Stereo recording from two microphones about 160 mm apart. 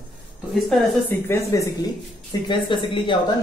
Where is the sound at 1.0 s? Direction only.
15° left (ahead or behind).